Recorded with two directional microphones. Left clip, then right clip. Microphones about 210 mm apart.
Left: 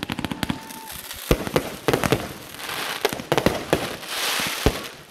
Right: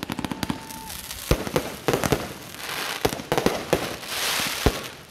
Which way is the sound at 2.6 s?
10° right (ahead or behind).